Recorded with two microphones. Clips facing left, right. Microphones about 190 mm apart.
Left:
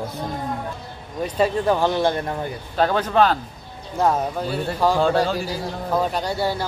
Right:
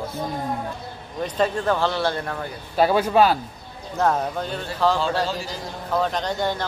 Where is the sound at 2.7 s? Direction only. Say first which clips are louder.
Right 1 dB; 10° right (ahead or behind).